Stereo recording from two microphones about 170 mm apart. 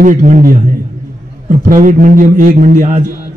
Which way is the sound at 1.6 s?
55° right (ahead or behind).